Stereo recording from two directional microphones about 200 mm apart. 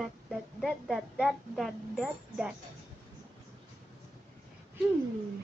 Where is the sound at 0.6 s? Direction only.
Centre (ahead or behind).